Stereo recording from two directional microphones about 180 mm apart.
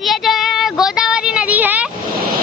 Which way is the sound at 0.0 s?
Centre (ahead or behind).